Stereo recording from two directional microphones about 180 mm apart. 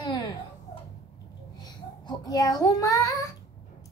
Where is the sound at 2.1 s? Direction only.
20° left (ahead or behind).